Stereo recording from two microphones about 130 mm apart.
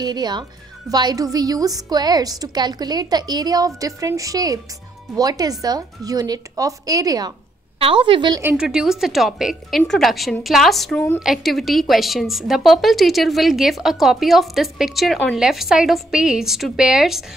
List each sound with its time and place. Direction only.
0.0 s a woman's voice: 35° right (ahead or behind)
7.8 s a woman's voice: 40° right (ahead or behind)
8.5 s a woman's voice: 5° right (ahead or behind)